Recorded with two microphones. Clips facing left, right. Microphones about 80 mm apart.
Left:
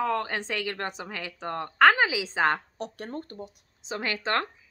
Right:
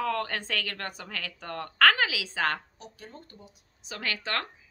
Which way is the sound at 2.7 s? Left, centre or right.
Left.